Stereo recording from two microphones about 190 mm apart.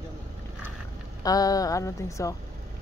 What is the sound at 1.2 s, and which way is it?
Speech, 20° left (ahead or behind).